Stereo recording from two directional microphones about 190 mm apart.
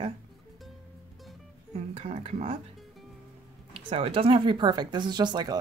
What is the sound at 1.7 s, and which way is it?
Speech, 30° right (ahead or behind).